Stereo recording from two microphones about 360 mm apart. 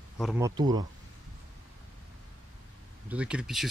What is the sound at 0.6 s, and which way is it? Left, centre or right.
Speech, centre.